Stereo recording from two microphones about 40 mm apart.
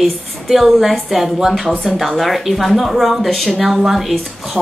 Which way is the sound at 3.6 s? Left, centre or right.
Centre.